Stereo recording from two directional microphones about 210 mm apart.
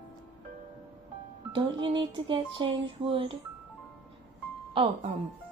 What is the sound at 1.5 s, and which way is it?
Speech, 25° right (ahead or behind).